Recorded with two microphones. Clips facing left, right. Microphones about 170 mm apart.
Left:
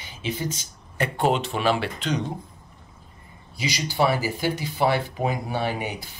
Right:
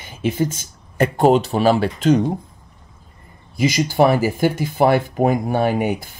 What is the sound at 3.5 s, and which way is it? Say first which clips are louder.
Speech: right 9 dB; 50° right (ahead or behind).